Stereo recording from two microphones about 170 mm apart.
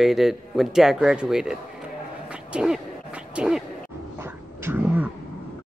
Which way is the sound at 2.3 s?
5° right (ahead or behind).